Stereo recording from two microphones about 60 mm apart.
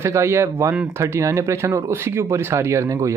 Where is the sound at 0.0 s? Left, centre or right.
Right.